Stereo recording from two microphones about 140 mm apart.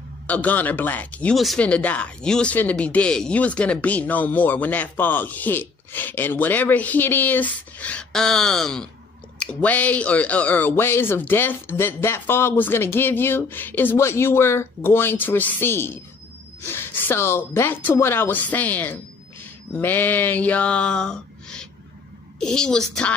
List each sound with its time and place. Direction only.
0.3 s a child's voice: 10° left (ahead or behind)